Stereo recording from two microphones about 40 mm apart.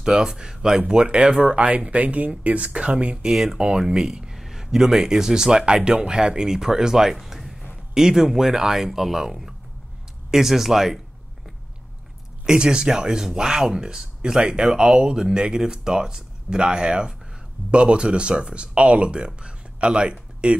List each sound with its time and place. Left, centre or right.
0.0 s speech: centre
3.3 s speech: centre
7.2 s music: centre
7.7 s speech: centre
12.4 s speech: right